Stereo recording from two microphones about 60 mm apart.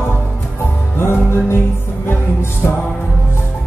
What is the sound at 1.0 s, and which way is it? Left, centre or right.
Music, left.